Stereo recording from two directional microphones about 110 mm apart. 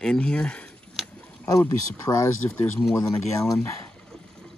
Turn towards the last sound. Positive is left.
turn(degrees=30)  # may be behind; listen again after turning